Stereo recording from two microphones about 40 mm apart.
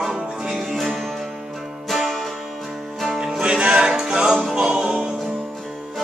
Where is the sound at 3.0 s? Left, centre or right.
Centre.